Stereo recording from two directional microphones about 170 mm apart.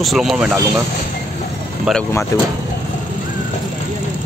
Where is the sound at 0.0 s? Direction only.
Centre (ahead or behind).